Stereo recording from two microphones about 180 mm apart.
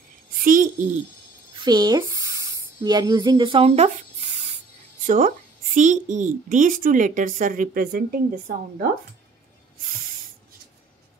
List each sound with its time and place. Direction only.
0.4 s a sound: 50° right (ahead or behind)
1.6 s speech: 25° right (ahead or behind)
5.0 s speech: 45° right (ahead or behind)